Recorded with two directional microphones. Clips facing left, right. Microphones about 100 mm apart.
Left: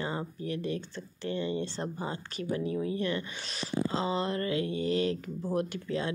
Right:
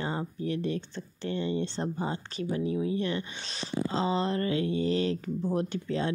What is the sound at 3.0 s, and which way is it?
Speech, 25° right (ahead or behind).